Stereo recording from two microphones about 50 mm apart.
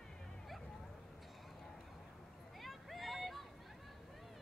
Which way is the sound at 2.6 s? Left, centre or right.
Centre.